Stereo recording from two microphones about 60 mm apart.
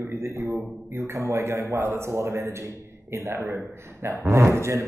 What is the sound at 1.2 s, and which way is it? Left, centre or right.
Speech, right.